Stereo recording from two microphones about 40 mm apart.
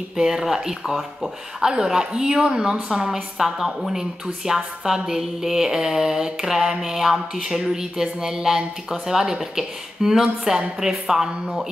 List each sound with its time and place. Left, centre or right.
0.2 s a woman's voice: centre
1.6 s a woman's voice: centre